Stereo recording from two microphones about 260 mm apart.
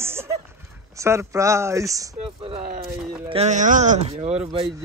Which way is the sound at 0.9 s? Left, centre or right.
Centre.